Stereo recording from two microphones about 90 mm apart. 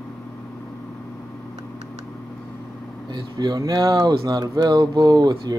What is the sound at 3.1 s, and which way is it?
Speech, 55° right (ahead or behind).